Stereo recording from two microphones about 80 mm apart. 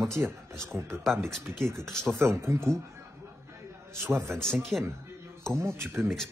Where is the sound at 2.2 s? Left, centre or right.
Right.